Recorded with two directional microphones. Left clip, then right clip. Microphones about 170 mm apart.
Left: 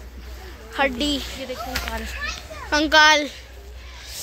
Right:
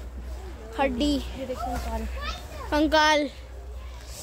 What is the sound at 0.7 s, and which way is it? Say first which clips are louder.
Speech: left 4 dB; centre (ahead or behind).